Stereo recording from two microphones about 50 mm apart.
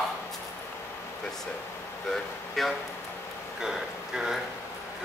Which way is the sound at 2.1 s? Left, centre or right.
Centre.